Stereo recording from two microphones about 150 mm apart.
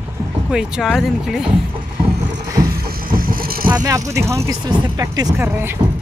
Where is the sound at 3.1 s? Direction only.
70° right (ahead or behind).